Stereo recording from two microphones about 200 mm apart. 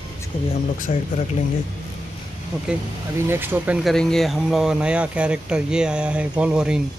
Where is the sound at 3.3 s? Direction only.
10° right (ahead or behind).